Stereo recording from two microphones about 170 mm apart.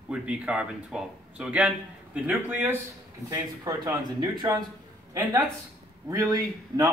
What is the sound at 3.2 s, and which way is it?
A man's voice, 20° right (ahead or behind).